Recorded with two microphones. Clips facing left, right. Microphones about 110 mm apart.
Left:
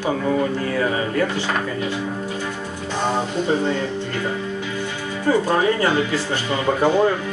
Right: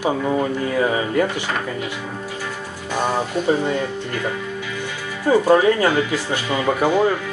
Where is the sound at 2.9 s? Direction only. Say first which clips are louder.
Right 1 dB; 15° right (ahead or behind).